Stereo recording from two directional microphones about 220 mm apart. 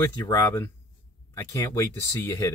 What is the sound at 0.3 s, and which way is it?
Speech, 10° left (ahead or behind).